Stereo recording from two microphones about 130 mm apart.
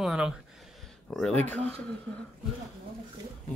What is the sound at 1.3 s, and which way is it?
Speech, 60° right (ahead or behind).